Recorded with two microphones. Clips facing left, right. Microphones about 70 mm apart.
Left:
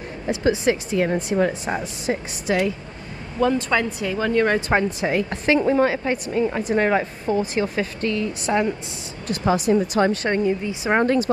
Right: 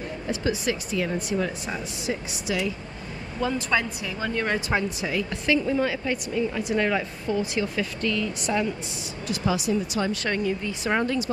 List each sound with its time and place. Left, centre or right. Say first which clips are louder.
0.4 s speech: left 8 dB; left
10.2 s speech: left 5 dB; left
11.0 s speech: left 8 dB; left